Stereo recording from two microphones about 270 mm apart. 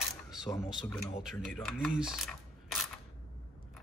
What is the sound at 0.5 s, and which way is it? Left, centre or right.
Speech, centre.